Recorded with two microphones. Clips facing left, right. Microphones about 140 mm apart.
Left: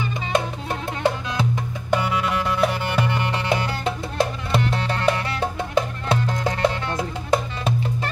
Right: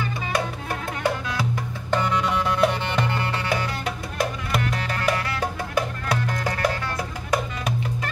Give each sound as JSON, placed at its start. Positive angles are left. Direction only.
{"t": 0.0, "sound": "music", "side_deg": 25}
{"t": 1.9, "sound": "music", "side_deg": 5}
{"t": 3.6, "sound": "music", "side_deg": 25}